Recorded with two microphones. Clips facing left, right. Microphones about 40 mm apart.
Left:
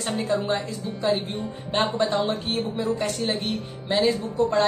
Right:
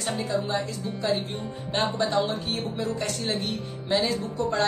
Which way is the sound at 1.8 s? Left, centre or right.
Left.